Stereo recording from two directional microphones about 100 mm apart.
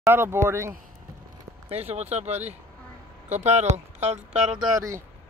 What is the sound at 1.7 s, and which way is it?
Speech, 90° right.